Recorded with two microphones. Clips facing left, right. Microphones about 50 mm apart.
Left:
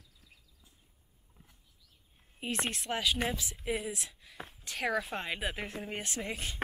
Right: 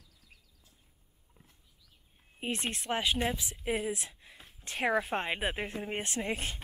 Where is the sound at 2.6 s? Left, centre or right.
Right.